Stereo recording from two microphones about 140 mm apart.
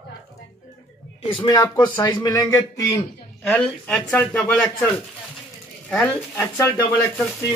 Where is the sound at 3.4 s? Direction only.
5° left (ahead or behind).